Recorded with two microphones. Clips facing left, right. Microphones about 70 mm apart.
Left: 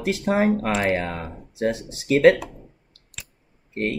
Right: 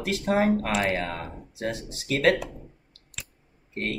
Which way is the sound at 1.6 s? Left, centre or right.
Left.